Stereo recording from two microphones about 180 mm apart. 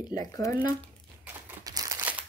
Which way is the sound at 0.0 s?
20° left (ahead or behind).